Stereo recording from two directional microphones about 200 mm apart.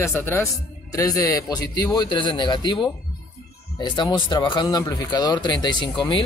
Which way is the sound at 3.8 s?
25° left (ahead or behind).